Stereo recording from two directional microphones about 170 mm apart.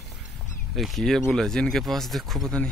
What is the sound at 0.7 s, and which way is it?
Speech, centre (ahead or behind).